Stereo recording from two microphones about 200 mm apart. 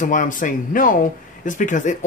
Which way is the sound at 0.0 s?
40° left (ahead or behind).